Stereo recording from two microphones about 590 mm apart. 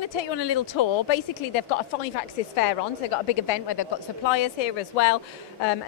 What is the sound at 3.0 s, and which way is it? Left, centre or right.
Speech, left.